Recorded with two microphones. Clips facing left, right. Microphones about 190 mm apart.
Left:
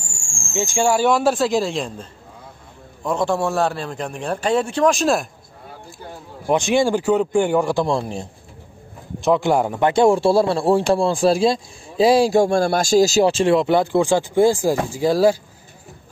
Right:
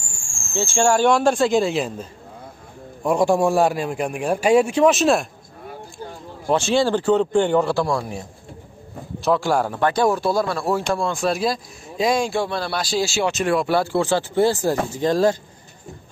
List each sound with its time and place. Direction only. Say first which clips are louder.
0.5 s a man's voice: even; 10° left (ahead or behind)
6.4 s a man's voice: left 1 dB; 15° left (ahead or behind)